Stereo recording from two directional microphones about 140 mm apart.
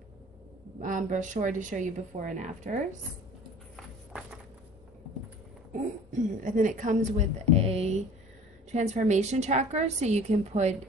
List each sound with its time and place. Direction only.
0.7 s speech: 65° right (ahead or behind)
6.4 s a woman's voice: 65° right (ahead or behind)